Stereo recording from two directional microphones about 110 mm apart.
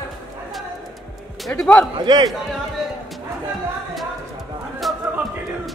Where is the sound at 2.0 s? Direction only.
40° right (ahead or behind).